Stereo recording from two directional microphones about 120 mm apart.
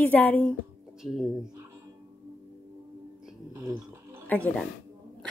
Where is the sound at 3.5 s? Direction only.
30° right (ahead or behind).